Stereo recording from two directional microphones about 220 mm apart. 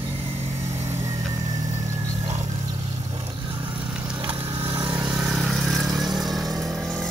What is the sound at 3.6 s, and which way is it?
Vehicle, 5° right (ahead or behind).